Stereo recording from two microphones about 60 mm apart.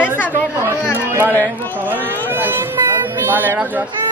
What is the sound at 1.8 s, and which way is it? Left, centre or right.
Speech, right.